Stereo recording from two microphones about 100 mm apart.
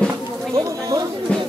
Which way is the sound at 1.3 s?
10° left (ahead or behind).